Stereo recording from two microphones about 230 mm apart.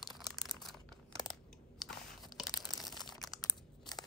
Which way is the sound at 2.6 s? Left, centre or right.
Centre.